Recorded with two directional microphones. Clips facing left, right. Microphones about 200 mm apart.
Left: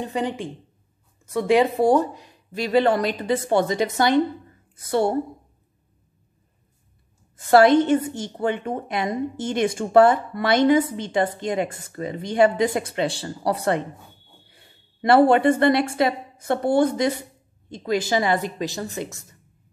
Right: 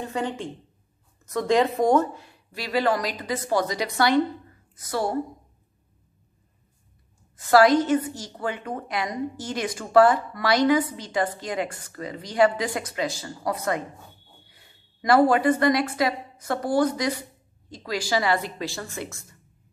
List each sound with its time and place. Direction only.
0.0 s a woman's voice: 15° left (ahead or behind)
7.3 s a woman's voice: 25° left (ahead or behind)
15.0 s a woman's voice: 30° left (ahead or behind)